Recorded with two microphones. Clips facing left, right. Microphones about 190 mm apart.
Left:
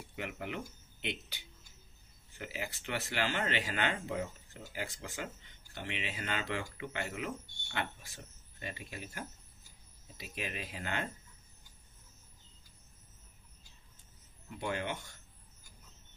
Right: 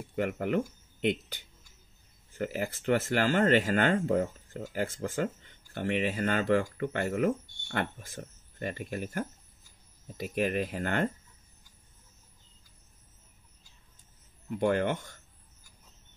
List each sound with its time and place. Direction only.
0.1 s speech: 50° right (ahead or behind)
14.6 s speech: 50° right (ahead or behind)